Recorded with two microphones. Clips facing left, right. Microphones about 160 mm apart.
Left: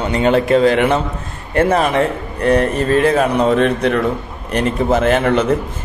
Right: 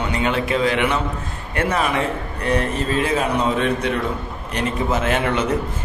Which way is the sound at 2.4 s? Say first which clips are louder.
Left 7 dB; 50° left (ahead or behind).